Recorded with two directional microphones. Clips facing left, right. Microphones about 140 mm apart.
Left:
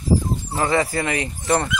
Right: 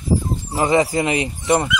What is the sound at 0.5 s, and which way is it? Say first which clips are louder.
Speech: right 4 dB; 20° right (ahead or behind).